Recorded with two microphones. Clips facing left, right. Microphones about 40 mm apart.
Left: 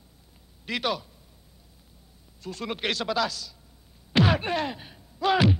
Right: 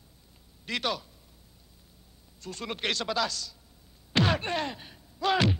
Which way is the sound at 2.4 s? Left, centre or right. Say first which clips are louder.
Left 3 dB; centre.